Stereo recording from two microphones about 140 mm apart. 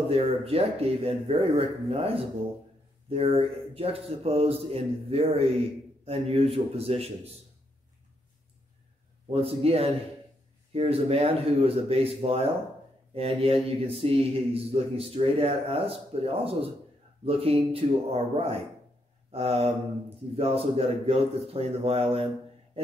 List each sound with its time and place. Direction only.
0.1 s a man's voice: 45° right (ahead or behind)
9.3 s a man's voice: 45° right (ahead or behind)